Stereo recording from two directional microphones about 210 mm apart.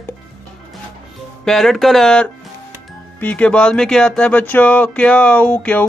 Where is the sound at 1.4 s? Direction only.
Centre (ahead or behind).